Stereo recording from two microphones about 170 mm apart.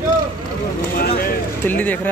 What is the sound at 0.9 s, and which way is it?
Speech, 60° left (ahead or behind).